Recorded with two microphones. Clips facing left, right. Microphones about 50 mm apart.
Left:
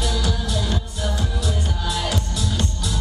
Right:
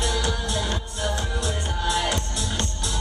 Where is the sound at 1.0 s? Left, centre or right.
Centre.